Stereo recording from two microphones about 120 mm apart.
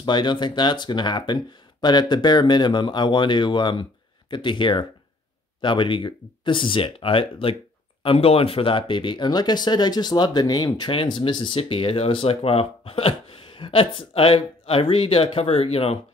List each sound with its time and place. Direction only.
0.0 s speech: 40° left (ahead or behind)
10.9 s speech: 45° left (ahead or behind)